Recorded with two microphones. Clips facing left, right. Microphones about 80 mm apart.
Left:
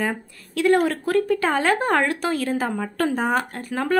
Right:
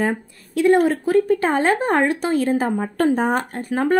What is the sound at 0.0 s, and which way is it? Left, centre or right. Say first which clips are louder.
Speech: right 4 dB; right.